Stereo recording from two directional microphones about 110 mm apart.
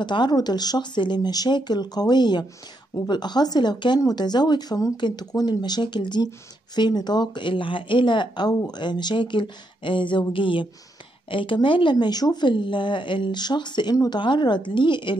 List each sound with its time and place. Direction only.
0.0 s speech: 45° left (ahead or behind)